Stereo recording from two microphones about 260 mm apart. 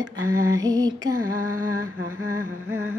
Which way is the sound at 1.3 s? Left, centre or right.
Right.